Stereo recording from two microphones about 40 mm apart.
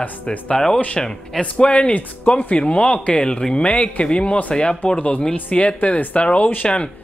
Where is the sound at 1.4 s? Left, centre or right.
Left.